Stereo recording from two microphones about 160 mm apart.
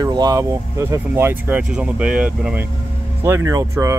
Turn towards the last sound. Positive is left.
turn(degrees=-20)  # may be behind; listen again after turning